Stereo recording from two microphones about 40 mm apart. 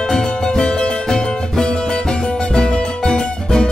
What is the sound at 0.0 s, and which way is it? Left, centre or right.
Music, centre.